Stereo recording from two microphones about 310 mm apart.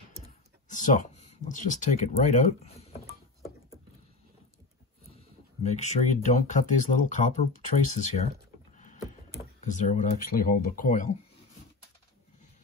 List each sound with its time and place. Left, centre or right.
0.7 s speech: left
5.6 s speech: left
9.4 s speech: left